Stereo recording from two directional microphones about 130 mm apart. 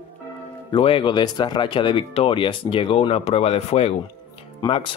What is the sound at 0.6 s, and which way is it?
Speech, 45° left (ahead or behind).